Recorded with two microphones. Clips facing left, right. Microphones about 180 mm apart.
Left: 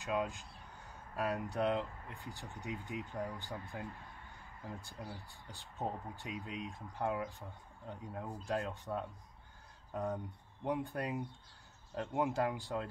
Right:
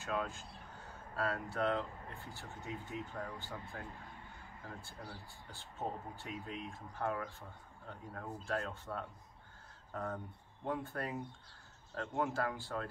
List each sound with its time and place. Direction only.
0.0 s speech: 15° left (ahead or behind)
5.0 s speech: 20° left (ahead or behind)